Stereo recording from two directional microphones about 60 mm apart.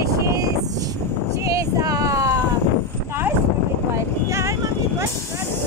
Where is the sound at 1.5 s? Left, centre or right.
Right.